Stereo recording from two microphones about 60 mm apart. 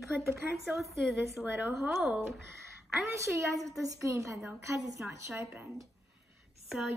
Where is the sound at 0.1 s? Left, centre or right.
Right.